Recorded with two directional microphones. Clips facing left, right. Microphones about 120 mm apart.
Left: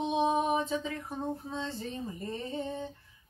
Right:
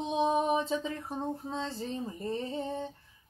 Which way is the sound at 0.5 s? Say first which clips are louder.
Right 1 dB; 30° right (ahead or behind).